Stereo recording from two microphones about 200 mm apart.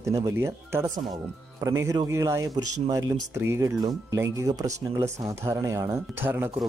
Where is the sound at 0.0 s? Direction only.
15° right (ahead or behind).